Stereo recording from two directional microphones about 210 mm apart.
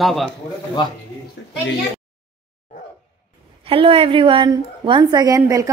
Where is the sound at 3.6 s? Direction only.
25° right (ahead or behind).